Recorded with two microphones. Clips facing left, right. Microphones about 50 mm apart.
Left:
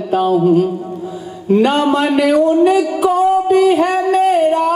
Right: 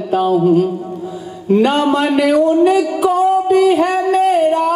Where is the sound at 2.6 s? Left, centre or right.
Left.